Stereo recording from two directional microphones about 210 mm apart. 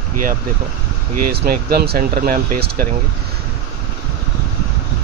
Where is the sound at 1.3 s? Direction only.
50° right (ahead or behind).